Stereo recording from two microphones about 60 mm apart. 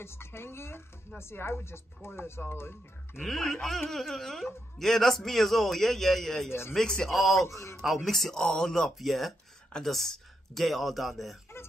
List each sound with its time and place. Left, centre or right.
0.0 s speech: left
3.2 s a man's voice: centre
7.4 s a man's voice: left
7.8 s a man's voice: centre